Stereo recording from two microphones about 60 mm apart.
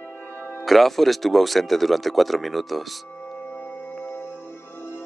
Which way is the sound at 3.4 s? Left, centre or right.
Left.